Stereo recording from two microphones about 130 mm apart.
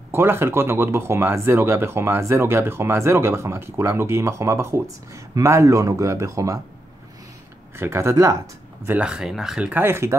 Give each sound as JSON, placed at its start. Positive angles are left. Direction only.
{"t": 0.1, "sound": "speech", "side_deg": -15}
{"t": 7.7, "sound": "speech", "side_deg": -20}
{"t": 8.8, "sound": "speech", "side_deg": -10}